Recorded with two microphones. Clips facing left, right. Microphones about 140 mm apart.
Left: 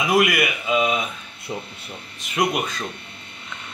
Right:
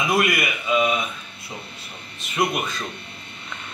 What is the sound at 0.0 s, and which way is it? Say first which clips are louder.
A man's voice: left 2 dB; 15° left (ahead or behind).